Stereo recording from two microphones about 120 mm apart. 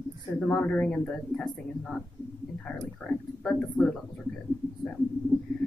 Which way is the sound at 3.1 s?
10° left (ahead or behind).